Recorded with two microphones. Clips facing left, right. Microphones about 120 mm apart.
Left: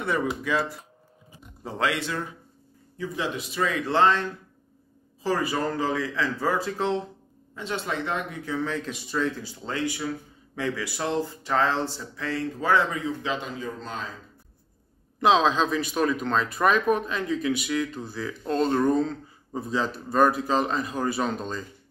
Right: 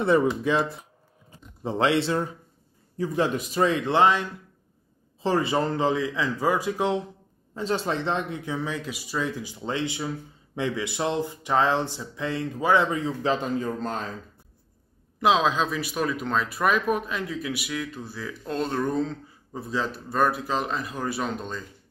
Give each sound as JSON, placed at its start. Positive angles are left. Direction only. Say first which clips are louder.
{"t": 0.0, "sound": "speech", "louder": "right 6 dB", "side_deg": -30}
{"t": 3.0, "sound": "a man's voice", "louder": "right 5 dB", "side_deg": -40}
{"t": 3.6, "sound": "speech", "louder": "right 1 dB", "side_deg": -25}
{"t": 5.2, "sound": "speech", "louder": "right 2 dB", "side_deg": -25}
{"t": 7.5, "sound": "speech", "louder": "right 4 dB", "side_deg": -35}
{"t": 12.9, "sound": "a man's voice", "louder": "right 4 dB", "side_deg": -35}
{"t": 15.1, "sound": "speech", "louder": "left 1 dB", "side_deg": -5}